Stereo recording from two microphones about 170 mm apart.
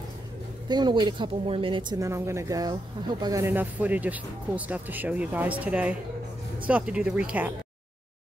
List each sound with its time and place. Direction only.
0.7 s speech: 25° right (ahead or behind); by 7.5 s 5° right (ahead or behind)